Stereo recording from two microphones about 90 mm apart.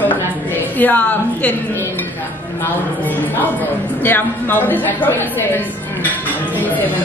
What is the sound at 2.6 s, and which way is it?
Speech, 20° left (ahead or behind).